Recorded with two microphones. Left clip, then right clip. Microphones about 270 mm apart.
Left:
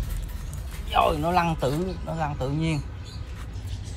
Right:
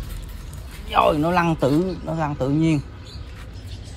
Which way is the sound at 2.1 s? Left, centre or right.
Centre.